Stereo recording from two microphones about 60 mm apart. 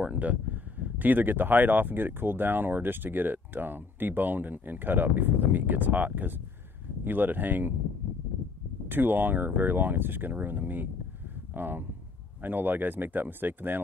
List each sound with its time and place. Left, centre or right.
0.0 s speech: right
8.8 s speech: right